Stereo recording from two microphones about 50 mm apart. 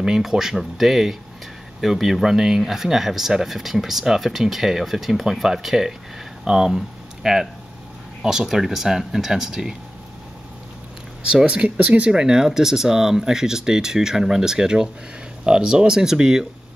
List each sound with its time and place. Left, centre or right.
0.2 s speech: centre
11.2 s speech: right
12.1 s speech: centre